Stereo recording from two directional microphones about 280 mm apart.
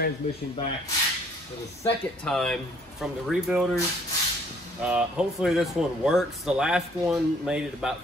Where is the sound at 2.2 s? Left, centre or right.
Centre.